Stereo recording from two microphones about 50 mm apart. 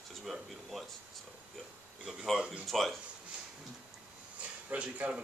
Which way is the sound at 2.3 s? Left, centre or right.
Centre.